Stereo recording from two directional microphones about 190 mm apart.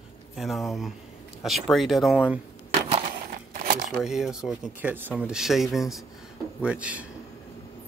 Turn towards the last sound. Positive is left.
turn(degrees=-5)  # may be behind; listen again after turning